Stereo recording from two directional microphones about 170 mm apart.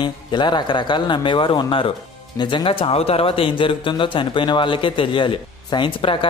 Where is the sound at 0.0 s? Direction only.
25° left (ahead or behind).